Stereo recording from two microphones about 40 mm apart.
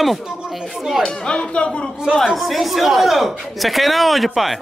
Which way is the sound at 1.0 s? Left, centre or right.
Left.